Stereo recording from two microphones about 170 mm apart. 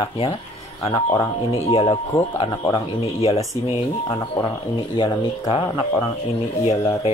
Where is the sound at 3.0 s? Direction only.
35° left (ahead or behind).